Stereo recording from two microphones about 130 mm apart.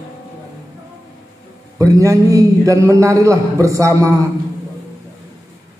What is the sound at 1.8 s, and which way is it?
A man's voice, 25° right (ahead or behind).